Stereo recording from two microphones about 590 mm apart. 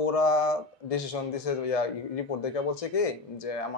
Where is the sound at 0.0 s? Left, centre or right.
Left.